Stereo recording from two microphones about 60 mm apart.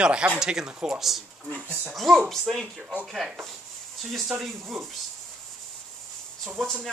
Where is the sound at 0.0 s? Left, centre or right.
Centre.